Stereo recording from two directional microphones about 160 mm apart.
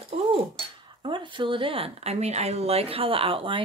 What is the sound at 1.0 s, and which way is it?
Speech, 30° right (ahead or behind).